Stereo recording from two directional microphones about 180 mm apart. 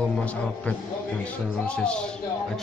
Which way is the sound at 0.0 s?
5° left (ahead or behind).